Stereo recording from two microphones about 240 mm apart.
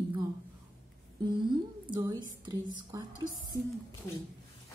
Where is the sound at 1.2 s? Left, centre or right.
Centre.